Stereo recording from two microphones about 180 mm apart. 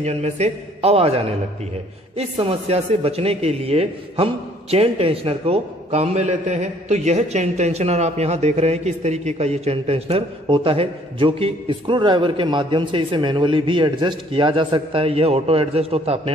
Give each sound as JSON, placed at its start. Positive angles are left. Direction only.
{"t": 0.0, "sound": "a man's voice", "side_deg": -40}